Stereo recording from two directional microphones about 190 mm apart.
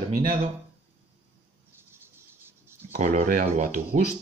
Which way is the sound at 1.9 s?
10° right (ahead or behind).